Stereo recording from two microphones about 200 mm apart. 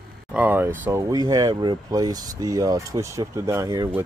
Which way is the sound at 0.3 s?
10° right (ahead or behind).